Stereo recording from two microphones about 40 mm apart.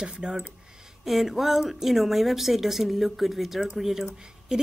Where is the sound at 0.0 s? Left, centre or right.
Right.